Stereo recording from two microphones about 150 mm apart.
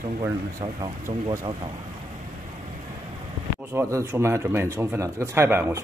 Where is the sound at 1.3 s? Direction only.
30° right (ahead or behind).